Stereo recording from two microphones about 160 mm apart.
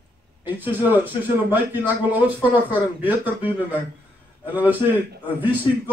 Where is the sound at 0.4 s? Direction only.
10° right (ahead or behind).